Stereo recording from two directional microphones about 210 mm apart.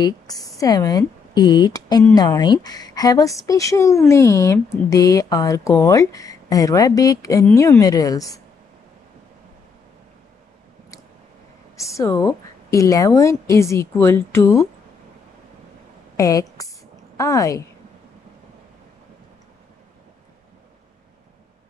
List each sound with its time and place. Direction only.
0.0 s a woman's voice: 20° left (ahead or behind)
11.9 s speech: 15° left (ahead or behind)
16.2 s a woman's voice: 15° left (ahead or behind)